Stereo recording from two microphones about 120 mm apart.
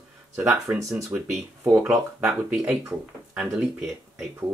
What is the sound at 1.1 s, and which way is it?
Speech, 5° right (ahead or behind).